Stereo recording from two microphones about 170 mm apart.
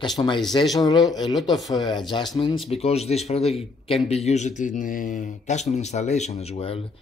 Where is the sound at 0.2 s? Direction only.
20° left (ahead or behind).